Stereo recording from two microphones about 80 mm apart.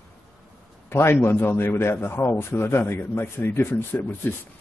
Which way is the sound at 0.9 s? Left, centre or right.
Left.